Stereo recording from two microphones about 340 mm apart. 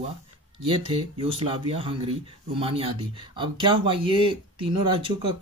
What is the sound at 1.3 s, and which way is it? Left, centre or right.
Speech, centre.